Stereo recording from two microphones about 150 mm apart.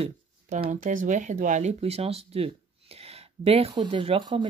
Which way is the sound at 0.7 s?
60° right (ahead or behind).